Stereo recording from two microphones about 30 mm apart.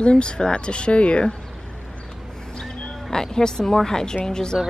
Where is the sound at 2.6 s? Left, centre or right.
Left.